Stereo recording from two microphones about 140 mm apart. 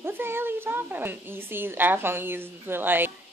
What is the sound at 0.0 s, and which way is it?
A child's voice, 15° right (ahead or behind).